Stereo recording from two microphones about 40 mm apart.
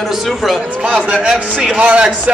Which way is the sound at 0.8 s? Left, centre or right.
Right.